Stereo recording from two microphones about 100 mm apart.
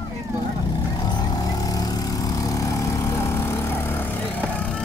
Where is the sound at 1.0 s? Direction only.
40° left (ahead or behind).